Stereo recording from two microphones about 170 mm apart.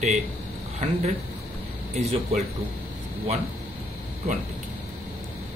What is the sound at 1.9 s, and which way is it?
Speech, 40° right (ahead or behind).